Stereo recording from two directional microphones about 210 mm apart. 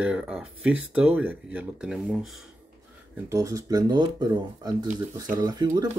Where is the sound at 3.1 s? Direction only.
15° right (ahead or behind).